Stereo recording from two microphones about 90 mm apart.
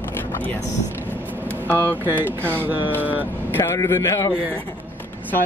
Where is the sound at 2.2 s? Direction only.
20° right (ahead or behind).